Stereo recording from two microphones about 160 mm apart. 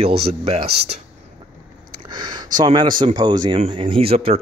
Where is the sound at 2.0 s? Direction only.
25° right (ahead or behind).